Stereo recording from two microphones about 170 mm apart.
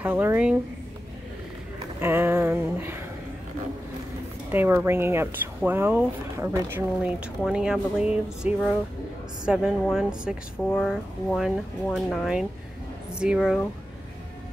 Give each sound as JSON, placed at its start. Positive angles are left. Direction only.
{"t": 0.0, "sound": "speech", "side_deg": -10}
{"t": 2.0, "sound": "a sound", "side_deg": -15}
{"t": 4.5, "sound": "speech", "side_deg": -10}
{"t": 7.4, "sound": "speech", "side_deg": -5}